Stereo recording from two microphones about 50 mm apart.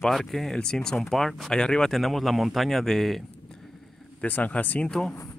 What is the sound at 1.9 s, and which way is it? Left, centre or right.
Speech, centre.